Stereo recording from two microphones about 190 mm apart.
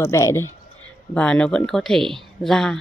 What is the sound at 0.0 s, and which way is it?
Speech, 15° left (ahead or behind).